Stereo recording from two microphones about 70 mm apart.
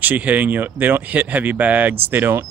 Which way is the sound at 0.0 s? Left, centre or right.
Right.